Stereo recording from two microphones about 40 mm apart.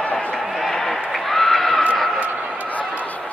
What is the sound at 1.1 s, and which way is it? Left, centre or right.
Horse, centre.